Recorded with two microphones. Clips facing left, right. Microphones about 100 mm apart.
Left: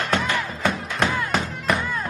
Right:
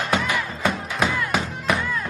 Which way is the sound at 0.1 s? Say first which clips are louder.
Right 1 dB; 10° right (ahead or behind).